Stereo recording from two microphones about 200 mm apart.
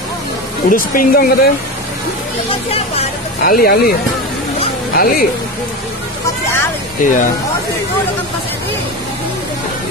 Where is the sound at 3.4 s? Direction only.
45° left (ahead or behind).